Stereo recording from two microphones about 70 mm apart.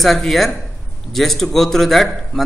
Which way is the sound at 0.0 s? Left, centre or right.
Centre.